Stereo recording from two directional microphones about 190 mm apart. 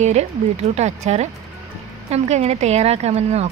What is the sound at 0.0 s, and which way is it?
Speech, 35° right (ahead or behind).